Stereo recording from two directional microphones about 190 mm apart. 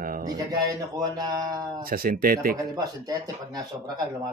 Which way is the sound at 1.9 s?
50° right (ahead or behind).